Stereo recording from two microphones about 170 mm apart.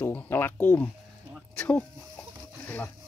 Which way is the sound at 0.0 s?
10° left (ahead or behind).